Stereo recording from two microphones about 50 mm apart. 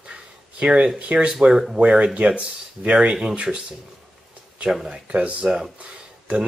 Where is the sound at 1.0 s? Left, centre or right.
Right.